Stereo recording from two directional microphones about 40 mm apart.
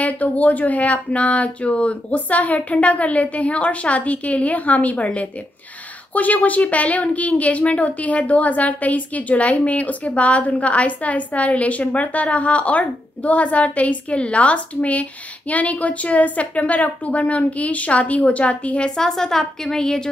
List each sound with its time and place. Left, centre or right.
0.0 s a woman's voice: left
18.9 s a woman's voice: centre